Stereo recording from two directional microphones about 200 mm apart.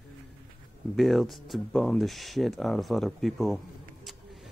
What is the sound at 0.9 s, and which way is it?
Speech, centre (ahead or behind).